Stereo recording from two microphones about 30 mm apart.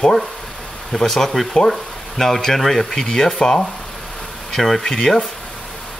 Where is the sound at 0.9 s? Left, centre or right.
Centre.